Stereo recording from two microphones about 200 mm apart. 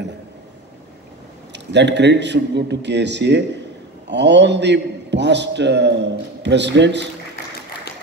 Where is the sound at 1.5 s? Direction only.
60° right (ahead or behind).